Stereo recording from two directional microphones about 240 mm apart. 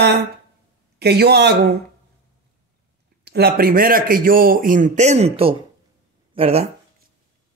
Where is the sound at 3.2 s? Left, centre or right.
Right.